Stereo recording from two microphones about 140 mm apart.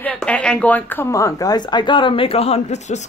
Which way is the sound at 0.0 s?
10° left (ahead or behind).